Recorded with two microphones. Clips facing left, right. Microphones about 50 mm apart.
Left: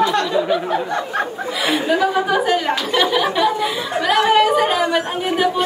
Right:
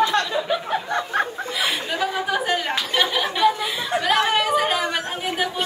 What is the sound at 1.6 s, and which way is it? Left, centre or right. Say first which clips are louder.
Speech: left 9 dB; centre.